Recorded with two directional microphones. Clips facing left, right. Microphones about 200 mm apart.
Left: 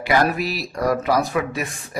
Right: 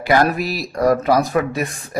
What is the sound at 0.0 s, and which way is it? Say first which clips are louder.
A man's voice: right 3 dB; 45° right (ahead or behind).